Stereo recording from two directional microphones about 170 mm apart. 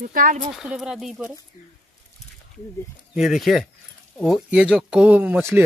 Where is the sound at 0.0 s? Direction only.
55° right (ahead or behind).